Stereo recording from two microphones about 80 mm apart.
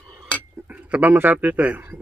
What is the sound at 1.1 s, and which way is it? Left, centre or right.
Speech, right.